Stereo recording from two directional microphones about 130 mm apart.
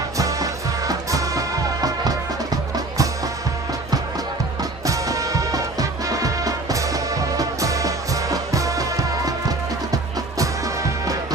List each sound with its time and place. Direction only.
0.2 s music: 25° right (ahead or behind)
4.8 s music: 25° right (ahead or behind)
10.4 s music: 25° right (ahead or behind)